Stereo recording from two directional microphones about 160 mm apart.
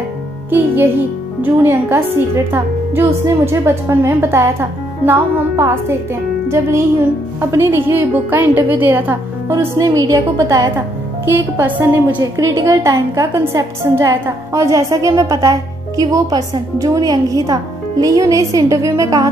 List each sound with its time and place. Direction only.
0.5 s a woman's voice: 15° right (ahead or behind)
7.3 s a woman's voice: 15° right (ahead or behind)